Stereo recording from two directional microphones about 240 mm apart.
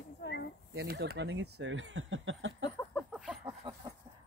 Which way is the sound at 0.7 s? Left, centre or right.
Right.